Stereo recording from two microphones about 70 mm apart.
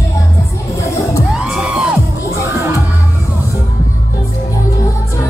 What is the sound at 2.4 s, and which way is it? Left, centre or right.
Music, right.